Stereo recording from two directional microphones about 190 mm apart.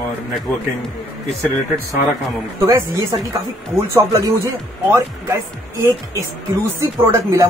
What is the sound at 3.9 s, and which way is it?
Speech, 15° right (ahead or behind).